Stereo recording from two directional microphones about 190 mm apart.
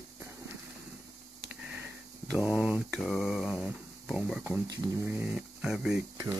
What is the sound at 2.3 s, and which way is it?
Speech, 5° right (ahead or behind).